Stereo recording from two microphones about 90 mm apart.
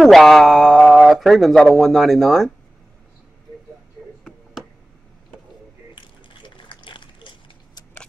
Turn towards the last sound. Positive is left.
turn(degrees=65)  # may be behind; listen again after turning